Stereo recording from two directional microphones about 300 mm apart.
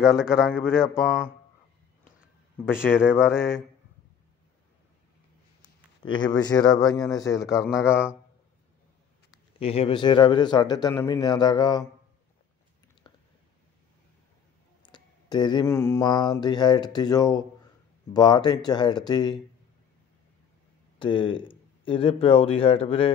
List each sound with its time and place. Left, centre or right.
0.0 s speech: centre
2.6 s speech: centre
6.0 s speech: centre
9.3 s speech: centre
13.0 s a sound: centre
14.8 s mantra: centre
18.1 s speech: centre
21.0 s speech: centre